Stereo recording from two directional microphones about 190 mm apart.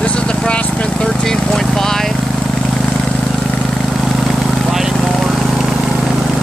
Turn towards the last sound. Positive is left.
turn(degrees=0)  # may be behind; listen again after turning